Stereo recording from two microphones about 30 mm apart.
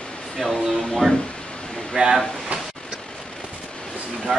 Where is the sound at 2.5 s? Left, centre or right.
Right.